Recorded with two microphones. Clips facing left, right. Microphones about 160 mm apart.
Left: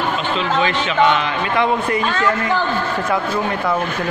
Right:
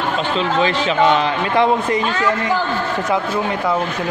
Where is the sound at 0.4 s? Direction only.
35° right (ahead or behind); by 3.7 s 15° right (ahead or behind).